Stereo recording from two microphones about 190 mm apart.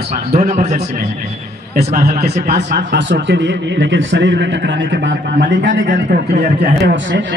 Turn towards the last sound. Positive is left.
turn(degrees=-75)  # may be behind; listen again after turning